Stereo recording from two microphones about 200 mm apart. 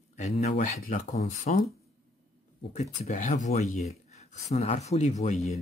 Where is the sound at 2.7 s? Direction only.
35° left (ahead or behind).